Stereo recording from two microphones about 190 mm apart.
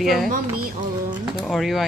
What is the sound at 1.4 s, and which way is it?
Speech, centre (ahead or behind).